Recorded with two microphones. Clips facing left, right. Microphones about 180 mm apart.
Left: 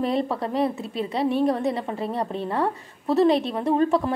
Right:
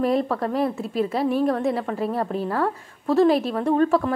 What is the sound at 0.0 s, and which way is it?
Speech, 25° left (ahead or behind).